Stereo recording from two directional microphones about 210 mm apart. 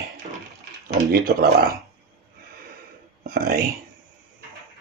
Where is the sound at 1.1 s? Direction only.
45° right (ahead or behind).